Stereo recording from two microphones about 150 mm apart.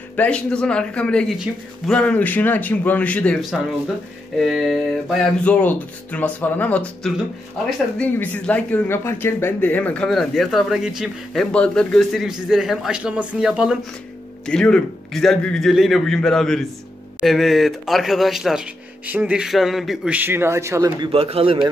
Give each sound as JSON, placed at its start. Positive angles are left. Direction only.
{"t": 0.1, "sound": "speech", "side_deg": 10}
{"t": 7.0, "sound": "a man's voice", "side_deg": 0}
{"t": 8.0, "sound": "speech", "side_deg": 10}
{"t": 11.5, "sound": "a man's voice", "side_deg": 5}
{"t": 14.4, "sound": "a man's voice", "side_deg": 5}
{"t": 20.2, "sound": "a man's voice", "side_deg": -15}
{"t": 21.0, "sound": "a man's voice", "side_deg": -40}